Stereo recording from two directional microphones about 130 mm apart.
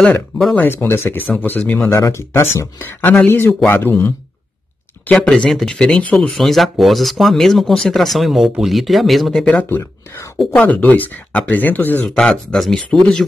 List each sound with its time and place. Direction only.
0.5 s speech: 15° left (ahead or behind)
1.9 s speech: 20° left (ahead or behind)
5.1 s speech: 5° left (ahead or behind)
10.3 s speech: 5° left (ahead or behind)